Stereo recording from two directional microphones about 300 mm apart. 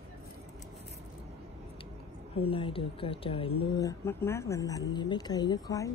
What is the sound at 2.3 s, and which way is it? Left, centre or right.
Speech, centre.